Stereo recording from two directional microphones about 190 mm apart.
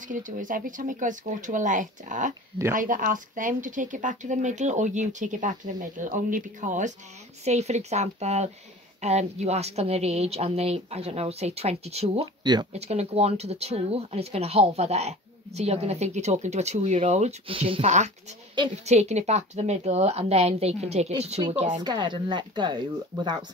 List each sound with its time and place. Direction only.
0.1 s speech: 45° right (ahead or behind); by 23.4 s 25° right (ahead or behind)